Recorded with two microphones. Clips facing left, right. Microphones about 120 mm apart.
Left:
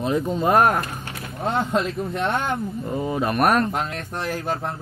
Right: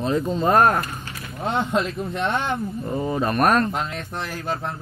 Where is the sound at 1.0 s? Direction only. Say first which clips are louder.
Left 2 dB; 55° left (ahead or behind).